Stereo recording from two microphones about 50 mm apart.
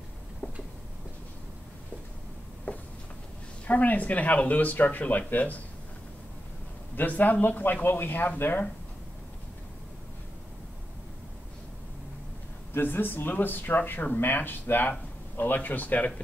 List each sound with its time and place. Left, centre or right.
2.7 s a sound: left
3.6 s speech: left
7.0 s speech: left
12.7 s speech: left